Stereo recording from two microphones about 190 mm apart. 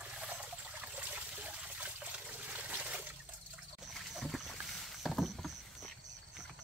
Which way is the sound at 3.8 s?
Centre (ahead or behind).